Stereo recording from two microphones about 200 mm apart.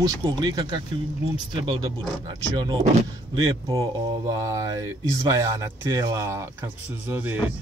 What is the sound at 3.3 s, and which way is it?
Speech, 20° right (ahead or behind).